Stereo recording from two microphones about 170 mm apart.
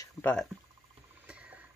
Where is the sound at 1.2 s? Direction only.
5° right (ahead or behind).